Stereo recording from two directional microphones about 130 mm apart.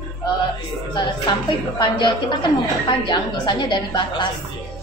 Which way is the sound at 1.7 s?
35° left (ahead or behind).